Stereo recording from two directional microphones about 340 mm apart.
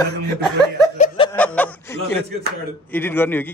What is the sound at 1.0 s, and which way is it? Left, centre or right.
Snicker, centre.